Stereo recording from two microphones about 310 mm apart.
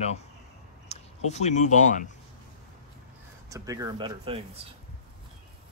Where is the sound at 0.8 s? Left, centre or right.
Left.